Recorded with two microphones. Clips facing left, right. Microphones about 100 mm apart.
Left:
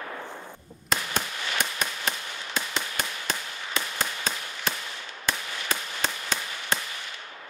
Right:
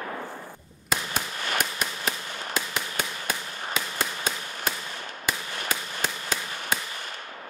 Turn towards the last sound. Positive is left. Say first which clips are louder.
# even
turn(degrees=-5)  # may be behind; listen again after turning